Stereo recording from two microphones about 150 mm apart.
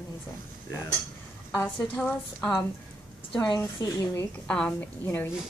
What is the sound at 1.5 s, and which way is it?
A woman's voice, 10° left (ahead or behind).